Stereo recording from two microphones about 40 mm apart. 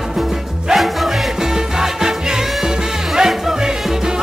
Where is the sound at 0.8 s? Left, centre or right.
Centre.